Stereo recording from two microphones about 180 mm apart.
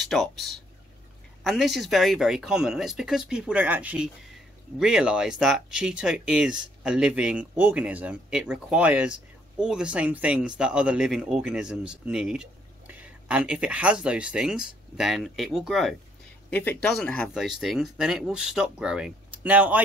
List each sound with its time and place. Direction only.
0.0 s speech: centre (ahead or behind)